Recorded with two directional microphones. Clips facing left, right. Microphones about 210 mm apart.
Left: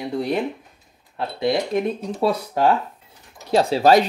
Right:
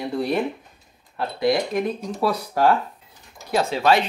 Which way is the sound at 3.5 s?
35° left (ahead or behind).